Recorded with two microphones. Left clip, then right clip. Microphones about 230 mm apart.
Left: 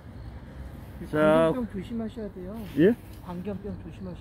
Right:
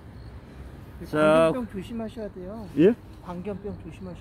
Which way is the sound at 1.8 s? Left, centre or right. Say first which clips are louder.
Right 1 dB; right.